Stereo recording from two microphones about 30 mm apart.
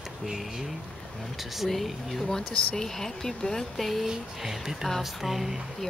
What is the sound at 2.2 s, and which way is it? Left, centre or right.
Speech, left.